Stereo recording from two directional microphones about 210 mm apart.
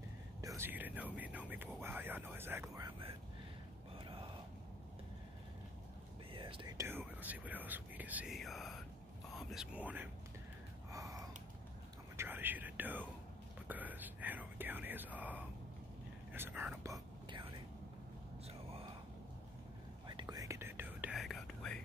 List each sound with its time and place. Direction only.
0.4 s speech: 15° right (ahead or behind)
6.3 s whispering: 25° right (ahead or behind)
6.8 s speech: 10° right (ahead or behind)
10.9 s a sound: 15° right (ahead or behind)
12.2 s speech: 10° right (ahead or behind)
16.3 s whispering: 10° right (ahead or behind)
20.1 s whispering: 20° right (ahead or behind); by 21.8 s 5° left (ahead or behind)